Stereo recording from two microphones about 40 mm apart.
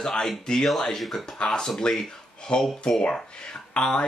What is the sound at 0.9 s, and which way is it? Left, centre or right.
Speech, centre.